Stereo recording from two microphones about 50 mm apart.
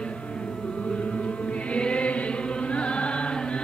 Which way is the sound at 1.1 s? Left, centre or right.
Left.